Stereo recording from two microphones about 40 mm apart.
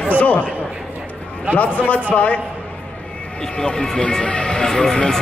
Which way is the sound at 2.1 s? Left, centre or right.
Left.